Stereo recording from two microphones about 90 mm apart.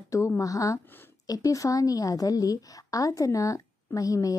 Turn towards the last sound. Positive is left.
turn(degrees=40)  # may be behind; listen again after turning